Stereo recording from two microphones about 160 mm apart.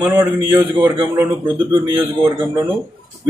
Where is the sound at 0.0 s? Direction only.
10° right (ahead or behind).